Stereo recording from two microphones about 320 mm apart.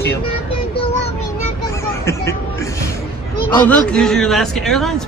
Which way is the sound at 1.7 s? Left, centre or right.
Centre.